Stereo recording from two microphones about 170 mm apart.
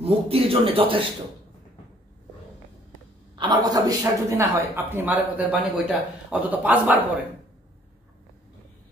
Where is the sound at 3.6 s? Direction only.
20° right (ahead or behind).